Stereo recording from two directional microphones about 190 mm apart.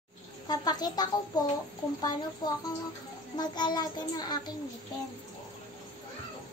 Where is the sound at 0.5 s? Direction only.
20° left (ahead or behind).